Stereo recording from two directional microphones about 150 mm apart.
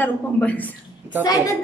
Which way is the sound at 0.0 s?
10° left (ahead or behind).